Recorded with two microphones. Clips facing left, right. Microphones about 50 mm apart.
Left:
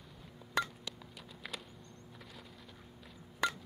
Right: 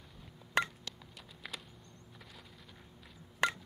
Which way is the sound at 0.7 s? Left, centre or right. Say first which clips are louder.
Left 2 dB; centre.